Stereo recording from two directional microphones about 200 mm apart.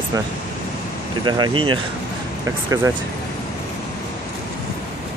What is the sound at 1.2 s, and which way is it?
Speech, 20° right (ahead or behind).